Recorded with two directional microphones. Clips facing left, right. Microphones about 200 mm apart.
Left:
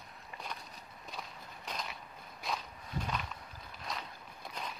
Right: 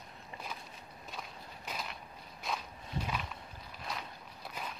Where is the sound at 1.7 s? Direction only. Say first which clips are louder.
Even; 5° right (ahead or behind).